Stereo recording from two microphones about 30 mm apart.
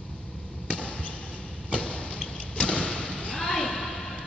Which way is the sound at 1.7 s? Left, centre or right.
Left.